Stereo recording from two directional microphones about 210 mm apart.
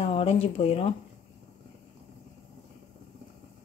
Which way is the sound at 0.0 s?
25° left (ahead or behind).